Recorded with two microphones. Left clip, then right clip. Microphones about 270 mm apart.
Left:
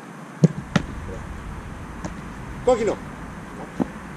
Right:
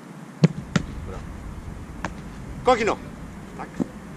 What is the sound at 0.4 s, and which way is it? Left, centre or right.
Basketball bounce, centre.